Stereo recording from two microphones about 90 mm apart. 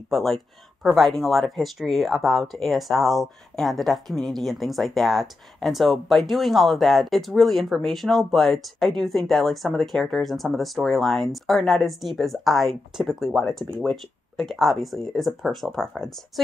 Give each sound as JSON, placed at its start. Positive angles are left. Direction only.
{"t": 0.1, "sound": "speech", "side_deg": 0}